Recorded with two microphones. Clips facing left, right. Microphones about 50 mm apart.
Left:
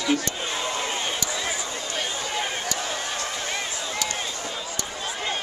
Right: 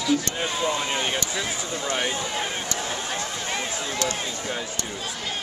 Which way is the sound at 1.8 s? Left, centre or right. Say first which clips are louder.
Right 6 dB; right.